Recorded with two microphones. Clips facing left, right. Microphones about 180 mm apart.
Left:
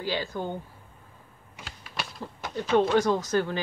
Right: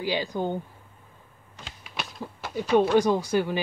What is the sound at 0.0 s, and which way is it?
Speech, 15° right (ahead or behind).